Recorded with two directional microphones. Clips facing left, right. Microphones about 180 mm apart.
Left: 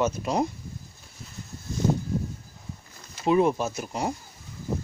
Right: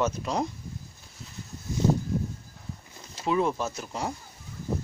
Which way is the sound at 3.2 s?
15° left (ahead or behind).